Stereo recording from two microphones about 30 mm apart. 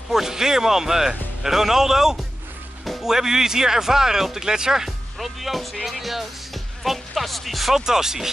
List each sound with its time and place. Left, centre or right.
0.1 s speech: centre
5.2 s speech: centre
7.7 s speech: centre